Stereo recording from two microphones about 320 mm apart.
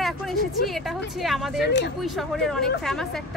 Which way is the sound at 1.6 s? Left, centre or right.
Left.